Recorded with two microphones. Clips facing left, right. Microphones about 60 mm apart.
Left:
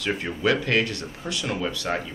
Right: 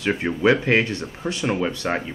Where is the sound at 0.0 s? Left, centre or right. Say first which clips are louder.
Right 5 dB; right.